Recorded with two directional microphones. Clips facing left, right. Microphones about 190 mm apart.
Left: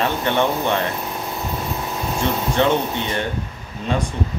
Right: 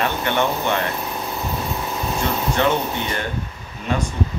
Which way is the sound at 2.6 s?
25° left (ahead or behind).